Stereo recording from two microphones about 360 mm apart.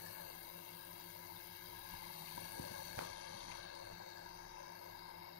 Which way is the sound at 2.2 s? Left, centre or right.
Left.